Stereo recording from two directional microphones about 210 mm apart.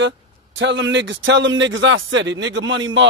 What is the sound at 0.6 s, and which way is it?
A man's voice, 60° right (ahead or behind).